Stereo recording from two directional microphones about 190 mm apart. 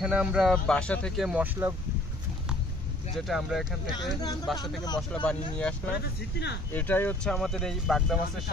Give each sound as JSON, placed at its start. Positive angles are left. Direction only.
{"t": 0.0, "sound": "speech", "side_deg": -5}
{"t": 3.2, "sound": "speech", "side_deg": 0}
{"t": 4.2, "sound": "speech", "side_deg": 20}
{"t": 5.1, "sound": "speech", "side_deg": 5}